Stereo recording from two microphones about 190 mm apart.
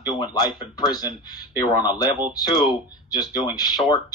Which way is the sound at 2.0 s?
20° left (ahead or behind).